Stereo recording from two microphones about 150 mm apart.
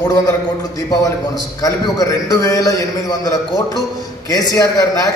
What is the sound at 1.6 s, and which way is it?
A man's voice, 20° left (ahead or behind).